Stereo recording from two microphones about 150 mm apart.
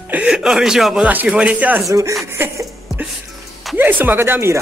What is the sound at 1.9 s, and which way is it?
Speech, 20° right (ahead or behind).